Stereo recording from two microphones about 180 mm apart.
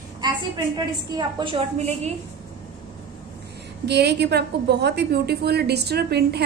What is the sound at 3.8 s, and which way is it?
A woman's voice, 65° right (ahead or behind).